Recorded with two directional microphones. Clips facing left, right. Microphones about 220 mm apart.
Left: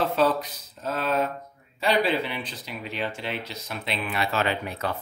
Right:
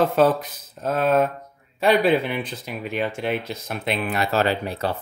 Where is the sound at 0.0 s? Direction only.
50° right (ahead or behind).